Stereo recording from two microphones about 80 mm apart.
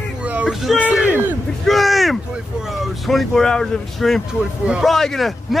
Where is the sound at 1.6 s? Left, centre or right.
Centre.